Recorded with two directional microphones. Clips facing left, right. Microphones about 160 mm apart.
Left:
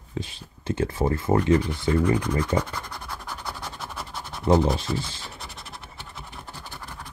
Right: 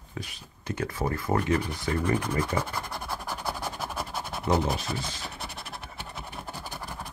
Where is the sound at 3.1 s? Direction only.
10° right (ahead or behind).